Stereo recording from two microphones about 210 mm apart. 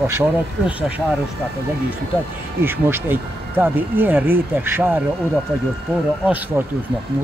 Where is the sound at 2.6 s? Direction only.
10° right (ahead or behind).